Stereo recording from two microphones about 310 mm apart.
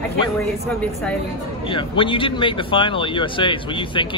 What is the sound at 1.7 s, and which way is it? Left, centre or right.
Speech, centre.